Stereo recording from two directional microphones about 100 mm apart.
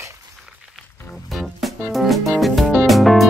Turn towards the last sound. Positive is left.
turn(degrees=0)  # may be behind; listen again after turning